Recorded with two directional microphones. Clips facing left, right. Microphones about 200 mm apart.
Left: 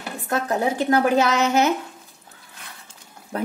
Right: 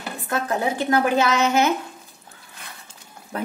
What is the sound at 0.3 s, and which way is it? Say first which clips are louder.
Speech: left 1 dB; 40° left (ahead or behind).